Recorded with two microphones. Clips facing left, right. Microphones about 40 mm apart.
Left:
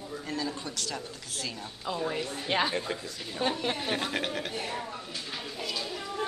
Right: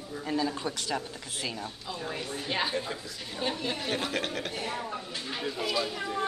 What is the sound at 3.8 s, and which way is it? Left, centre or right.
Speech, centre.